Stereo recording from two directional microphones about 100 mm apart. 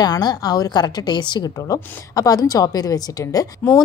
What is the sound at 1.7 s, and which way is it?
A woman's voice, 35° left (ahead or behind).